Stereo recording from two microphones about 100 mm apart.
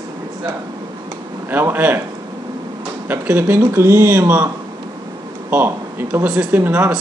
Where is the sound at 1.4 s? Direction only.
20° right (ahead or behind).